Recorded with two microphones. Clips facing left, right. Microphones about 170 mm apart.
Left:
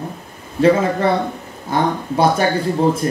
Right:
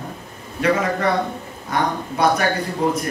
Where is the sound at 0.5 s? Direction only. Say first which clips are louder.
Left 5 dB; 30° left (ahead or behind).